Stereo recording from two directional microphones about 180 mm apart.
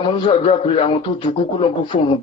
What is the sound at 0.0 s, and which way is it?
A man's voice, 25° left (ahead or behind).